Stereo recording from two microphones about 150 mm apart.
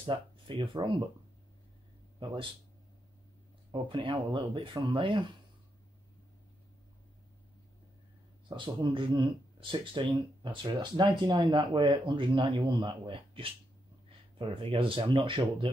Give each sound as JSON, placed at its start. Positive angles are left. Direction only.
{"t": 0.0, "sound": "speech", "side_deg": -35}
{"t": 3.7, "sound": "speech", "side_deg": -30}
{"t": 8.5, "sound": "speech", "side_deg": -30}